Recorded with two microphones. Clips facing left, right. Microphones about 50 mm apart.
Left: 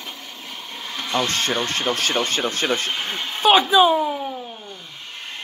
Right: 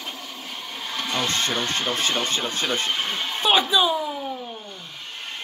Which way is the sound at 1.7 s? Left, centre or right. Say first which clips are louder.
Left 2 dB; left.